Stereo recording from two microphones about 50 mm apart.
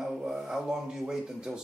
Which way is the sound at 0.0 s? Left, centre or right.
Centre.